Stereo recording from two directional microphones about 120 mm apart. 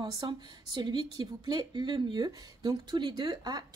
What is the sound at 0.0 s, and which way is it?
A woman's voice, 40° right (ahead or behind).